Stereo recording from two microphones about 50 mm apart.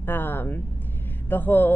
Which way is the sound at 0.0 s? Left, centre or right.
Left.